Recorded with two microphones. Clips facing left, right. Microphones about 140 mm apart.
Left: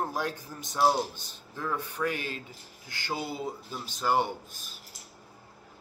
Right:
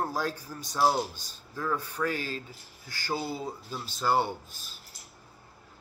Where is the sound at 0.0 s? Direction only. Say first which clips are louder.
Right 1 dB; 20° left (ahead or behind).